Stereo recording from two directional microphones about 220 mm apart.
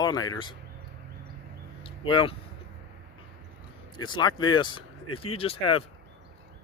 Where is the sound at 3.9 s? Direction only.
20° left (ahead or behind).